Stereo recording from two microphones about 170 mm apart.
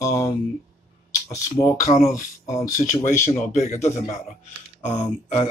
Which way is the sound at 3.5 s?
45° left (ahead or behind).